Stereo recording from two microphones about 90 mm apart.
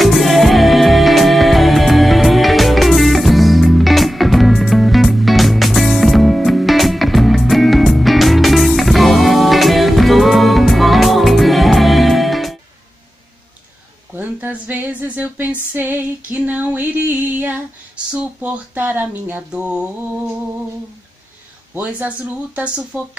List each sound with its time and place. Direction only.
0.0 s music: centre (ahead or behind)
14.1 s a sound: 20° right (ahead or behind)
15.7 s female singing: 20° right (ahead or behind)
18.1 s speech: 15° right (ahead or behind)
19.5 s speech: 10° right (ahead or behind)
21.7 s speech: 15° right (ahead or behind)